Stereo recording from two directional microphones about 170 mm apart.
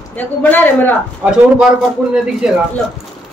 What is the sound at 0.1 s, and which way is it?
Speech, 10° left (ahead or behind).